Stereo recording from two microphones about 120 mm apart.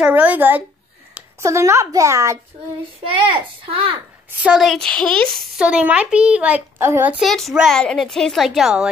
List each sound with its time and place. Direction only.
0.0 s a woman's voice: 10° right (ahead or behind)
3.0 s a child's voice: 45° right (ahead or behind)
4.4 s a woman's voice: 5° right (ahead or behind)
5.6 s a woman's voice: 10° right (ahead or behind)
7.2 s a woman's voice: centre (ahead or behind)